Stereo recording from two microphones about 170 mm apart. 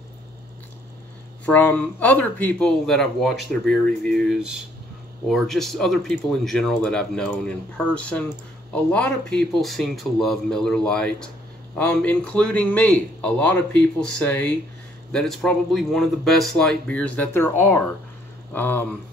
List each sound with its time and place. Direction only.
1.4 s speech: 10° left (ahead or behind)